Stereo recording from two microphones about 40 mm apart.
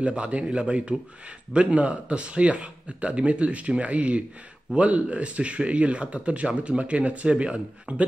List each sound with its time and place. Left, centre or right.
0.0 s speech: right